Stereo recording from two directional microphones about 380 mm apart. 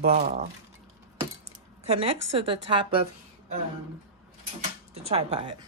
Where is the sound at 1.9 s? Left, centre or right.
Centre.